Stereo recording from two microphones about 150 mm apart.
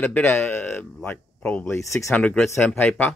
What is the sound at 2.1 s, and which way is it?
Speech, 5° left (ahead or behind).